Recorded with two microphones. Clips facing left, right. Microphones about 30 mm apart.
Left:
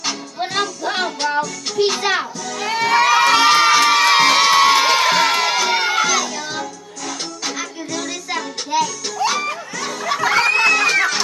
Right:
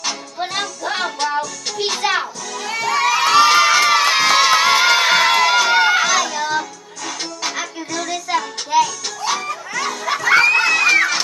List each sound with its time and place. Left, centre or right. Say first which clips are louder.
0.0 s music: even; centre
2.6 s music: left 3 dB; left
3.2 s crowd: even; centre
5.5 s music: right 4 dB; centre
9.8 s children playing: right 2 dB; centre
10.4 s music: right 1 dB; centre